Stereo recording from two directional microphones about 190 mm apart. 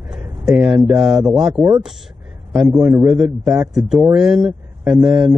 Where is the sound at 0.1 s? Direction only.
5° right (ahead or behind).